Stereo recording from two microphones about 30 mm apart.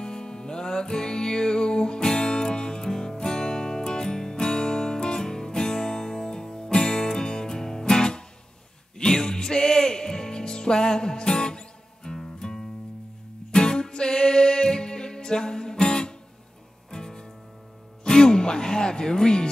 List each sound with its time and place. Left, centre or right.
0.0 s music: left